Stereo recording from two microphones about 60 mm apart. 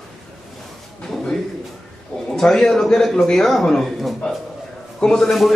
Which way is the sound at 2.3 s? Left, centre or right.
Centre.